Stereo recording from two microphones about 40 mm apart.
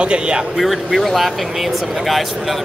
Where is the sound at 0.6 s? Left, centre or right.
Centre.